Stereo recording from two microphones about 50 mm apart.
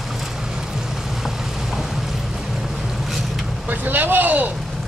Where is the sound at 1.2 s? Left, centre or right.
Centre.